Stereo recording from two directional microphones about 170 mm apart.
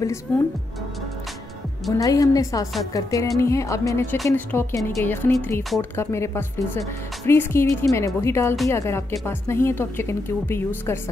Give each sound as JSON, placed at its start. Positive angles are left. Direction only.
{"t": 0.3, "sound": "a woman's voice", "side_deg": 10}
{"t": 1.9, "sound": "a woman's voice", "side_deg": 20}